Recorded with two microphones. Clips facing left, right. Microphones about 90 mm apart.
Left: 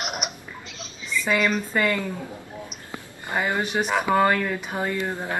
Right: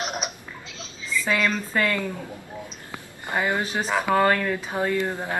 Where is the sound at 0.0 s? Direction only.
15° left (ahead or behind).